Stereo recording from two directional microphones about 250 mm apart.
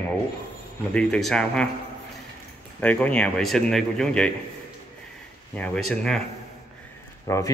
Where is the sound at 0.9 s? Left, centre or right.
Centre.